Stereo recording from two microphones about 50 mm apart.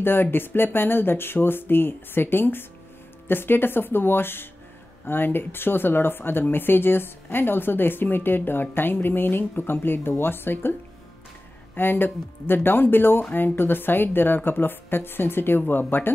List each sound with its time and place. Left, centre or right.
0.0 s speech: left